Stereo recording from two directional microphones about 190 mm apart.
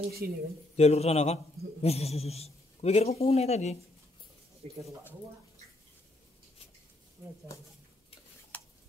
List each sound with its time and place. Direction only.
0.2 s speech: 55° right (ahead or behind)
0.7 s a man's voice: 35° left (ahead or behind)
8.5 s a sound: 10° left (ahead or behind)